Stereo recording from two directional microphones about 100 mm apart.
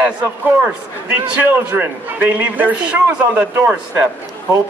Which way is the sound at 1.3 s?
15° right (ahead or behind).